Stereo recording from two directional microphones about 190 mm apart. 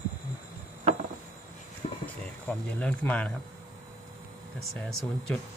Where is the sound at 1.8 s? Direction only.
40° left (ahead or behind).